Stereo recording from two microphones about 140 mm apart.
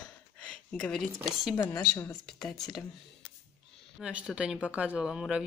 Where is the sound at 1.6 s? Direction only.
25° left (ahead or behind).